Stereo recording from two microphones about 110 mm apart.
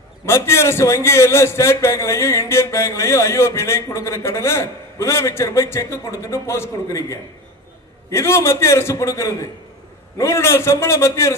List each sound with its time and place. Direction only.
0.2 s a man's voice: 25° left (ahead or behind)